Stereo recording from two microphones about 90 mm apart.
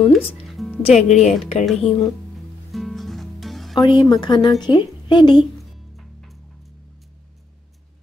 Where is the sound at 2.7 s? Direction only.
Centre (ahead or behind).